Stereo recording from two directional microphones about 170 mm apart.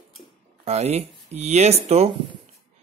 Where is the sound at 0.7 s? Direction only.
40° right (ahead or behind).